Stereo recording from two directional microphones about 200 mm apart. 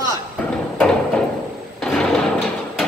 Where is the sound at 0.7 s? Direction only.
5° left (ahead or behind).